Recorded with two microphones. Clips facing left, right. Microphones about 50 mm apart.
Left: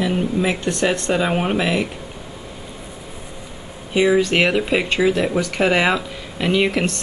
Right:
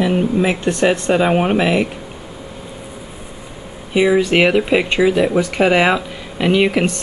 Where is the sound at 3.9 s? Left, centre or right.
Centre.